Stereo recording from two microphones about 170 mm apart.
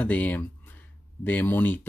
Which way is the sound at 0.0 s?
10° left (ahead or behind).